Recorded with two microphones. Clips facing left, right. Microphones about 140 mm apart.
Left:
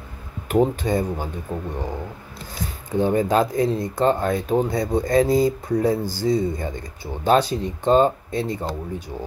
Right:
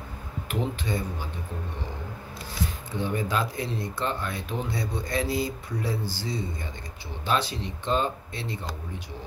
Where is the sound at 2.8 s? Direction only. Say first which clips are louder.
Left 11 dB; 45° left (ahead or behind).